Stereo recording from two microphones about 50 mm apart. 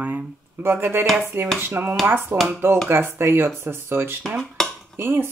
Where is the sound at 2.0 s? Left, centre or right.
Right.